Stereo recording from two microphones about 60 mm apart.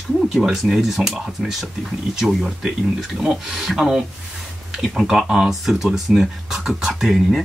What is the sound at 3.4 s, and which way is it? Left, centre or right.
Speech, centre.